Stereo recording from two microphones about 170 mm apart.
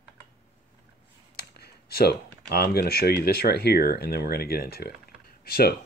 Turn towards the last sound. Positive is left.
turn(degrees=65)  # may be behind; listen again after turning